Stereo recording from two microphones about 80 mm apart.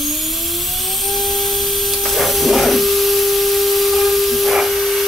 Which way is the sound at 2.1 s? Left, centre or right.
Centre.